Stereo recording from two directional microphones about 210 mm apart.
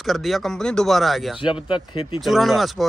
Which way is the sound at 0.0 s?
Centre (ahead or behind).